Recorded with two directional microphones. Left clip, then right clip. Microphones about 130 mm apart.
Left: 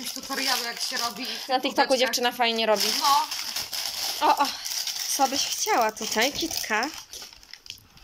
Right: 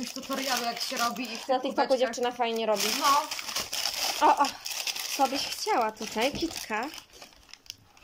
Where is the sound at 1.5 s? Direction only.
10° right (ahead or behind).